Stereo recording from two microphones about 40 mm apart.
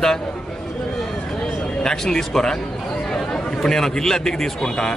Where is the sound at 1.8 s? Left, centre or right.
Centre.